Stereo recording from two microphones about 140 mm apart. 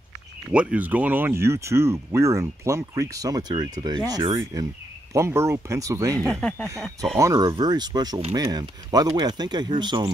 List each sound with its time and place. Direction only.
0.5 s speech: 10° right (ahead or behind); by 6.1 s 25° right (ahead or behind)
6.1 s speech: 5° left (ahead or behind)
7.2 s speech: 25° right (ahead or behind)